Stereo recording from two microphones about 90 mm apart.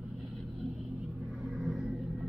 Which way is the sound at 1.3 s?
5° right (ahead or behind).